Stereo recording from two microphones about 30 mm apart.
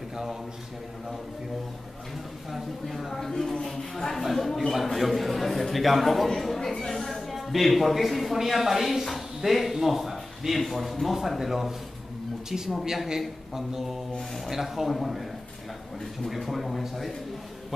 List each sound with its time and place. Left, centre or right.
2.5 s a man's voice: centre
3.1 s a man's voice: centre
12.4 s a man's voice: centre
16.3 s a man's voice: centre